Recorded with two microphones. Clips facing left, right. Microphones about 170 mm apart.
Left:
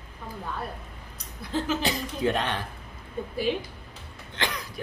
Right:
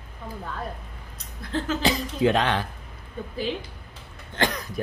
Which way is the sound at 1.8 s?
90° right.